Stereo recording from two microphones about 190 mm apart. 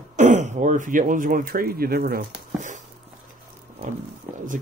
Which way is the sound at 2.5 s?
40° right (ahead or behind).